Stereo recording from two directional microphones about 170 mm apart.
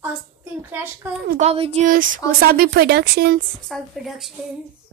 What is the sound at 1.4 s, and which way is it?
Speech, 35° right (ahead or behind).